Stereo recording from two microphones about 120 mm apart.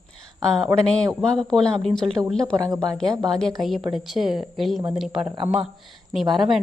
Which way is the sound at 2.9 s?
5° left (ahead or behind).